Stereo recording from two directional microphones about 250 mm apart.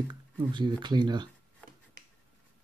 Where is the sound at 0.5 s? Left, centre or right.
Centre.